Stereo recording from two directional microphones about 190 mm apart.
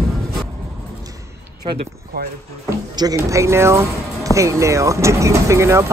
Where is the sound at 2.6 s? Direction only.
15° right (ahead or behind).